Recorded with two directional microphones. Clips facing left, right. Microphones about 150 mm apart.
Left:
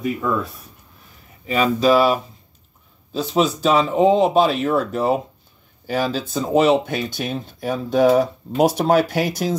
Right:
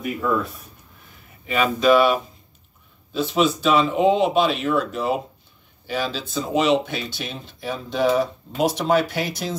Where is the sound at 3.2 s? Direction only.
40° left (ahead or behind).